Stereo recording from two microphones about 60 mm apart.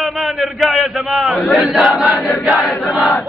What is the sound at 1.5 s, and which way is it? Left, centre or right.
Battle cry, centre.